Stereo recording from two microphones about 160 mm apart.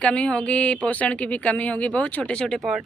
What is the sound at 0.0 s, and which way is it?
Speech, 5° left (ahead or behind).